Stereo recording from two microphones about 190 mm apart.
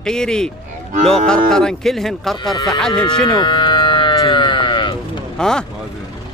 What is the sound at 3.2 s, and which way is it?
Sheep, 20° left (ahead or behind).